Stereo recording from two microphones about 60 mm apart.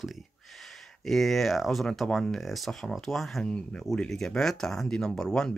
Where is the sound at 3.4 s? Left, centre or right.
Centre.